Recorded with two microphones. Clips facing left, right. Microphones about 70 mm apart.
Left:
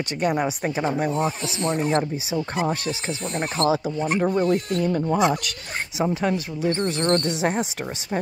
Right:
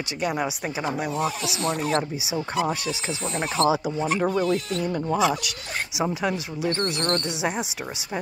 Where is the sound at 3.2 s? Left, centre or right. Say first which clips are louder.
Right 1 dB; left.